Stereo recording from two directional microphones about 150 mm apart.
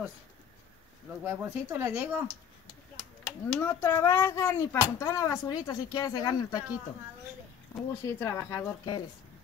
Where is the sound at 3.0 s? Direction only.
5° left (ahead or behind); by 6.6 s 25° left (ahead or behind).